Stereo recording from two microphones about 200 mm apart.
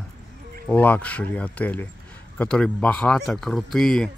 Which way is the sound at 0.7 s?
10° left (ahead or behind).